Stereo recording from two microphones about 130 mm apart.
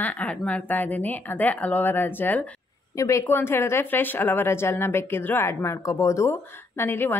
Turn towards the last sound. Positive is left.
turn(degrees=20)  # may be behind; listen again after turning